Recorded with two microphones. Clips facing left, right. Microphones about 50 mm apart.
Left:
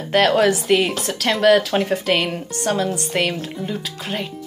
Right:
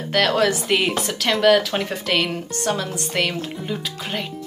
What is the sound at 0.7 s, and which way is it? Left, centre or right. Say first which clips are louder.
Speech: left 1 dB; centre.